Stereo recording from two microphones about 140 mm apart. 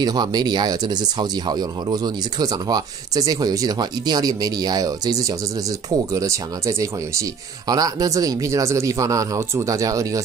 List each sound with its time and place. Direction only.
0.0 s speech: 30° right (ahead or behind)